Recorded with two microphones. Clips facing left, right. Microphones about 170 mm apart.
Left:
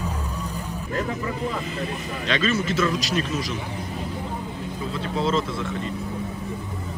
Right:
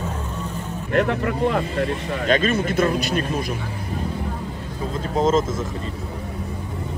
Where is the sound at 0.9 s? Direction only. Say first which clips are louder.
Right 7 dB; 70° right (ahead or behind).